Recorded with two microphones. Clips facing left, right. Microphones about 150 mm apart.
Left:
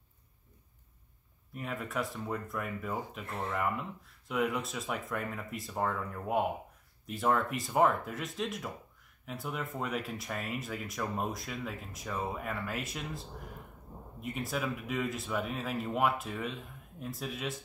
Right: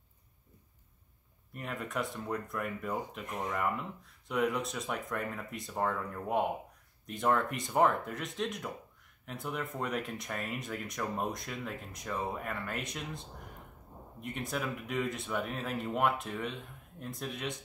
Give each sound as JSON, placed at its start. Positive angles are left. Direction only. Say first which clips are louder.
{"t": 1.5, "sound": "speech", "louder": "left 1 dB", "side_deg": 0}
{"t": 3.3, "sound": "speech", "louder": "even", "side_deg": -15}
{"t": 3.5, "sound": "speech", "louder": "left 1 dB", "side_deg": 0}